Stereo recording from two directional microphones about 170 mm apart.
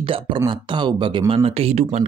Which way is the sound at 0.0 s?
30° right (ahead or behind).